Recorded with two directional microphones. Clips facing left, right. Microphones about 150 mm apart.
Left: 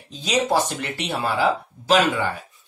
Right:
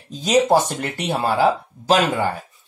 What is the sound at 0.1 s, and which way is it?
Speech, 45° right (ahead or behind).